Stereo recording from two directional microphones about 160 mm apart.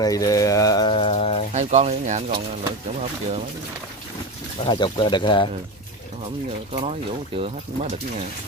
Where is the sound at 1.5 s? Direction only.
45° right (ahead or behind).